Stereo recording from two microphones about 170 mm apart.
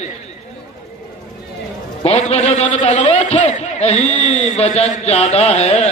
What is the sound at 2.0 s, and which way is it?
A man's voice, 35° left (ahead or behind).